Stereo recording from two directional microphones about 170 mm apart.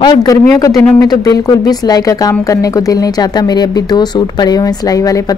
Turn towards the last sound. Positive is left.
turn(degrees=20)  # may be behind; listen again after turning